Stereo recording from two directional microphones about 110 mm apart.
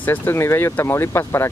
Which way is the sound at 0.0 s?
20° left (ahead or behind).